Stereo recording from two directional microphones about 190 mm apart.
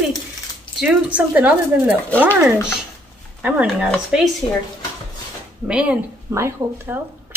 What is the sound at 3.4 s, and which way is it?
Speech, 5° right (ahead or behind).